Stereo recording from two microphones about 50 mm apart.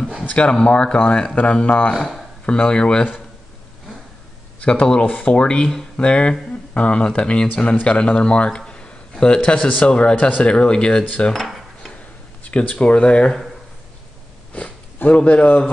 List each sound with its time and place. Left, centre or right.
0.3 s speech: left
2.0 s speech: centre
2.4 s speech: centre
4.6 s a man's voice: left
11.3 s dishes: centre
12.4 s speech: left
15.0 s speech: left